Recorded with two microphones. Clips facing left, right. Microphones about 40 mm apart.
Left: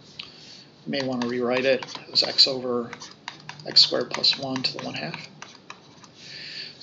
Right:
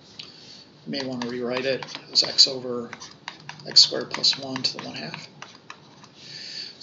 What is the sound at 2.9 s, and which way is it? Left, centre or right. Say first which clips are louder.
Computer keyboard: even; centre.